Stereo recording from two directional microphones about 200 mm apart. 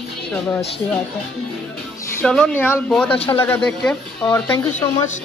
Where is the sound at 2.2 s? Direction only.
5° left (ahead or behind).